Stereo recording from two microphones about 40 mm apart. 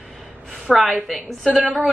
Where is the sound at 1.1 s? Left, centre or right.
Centre.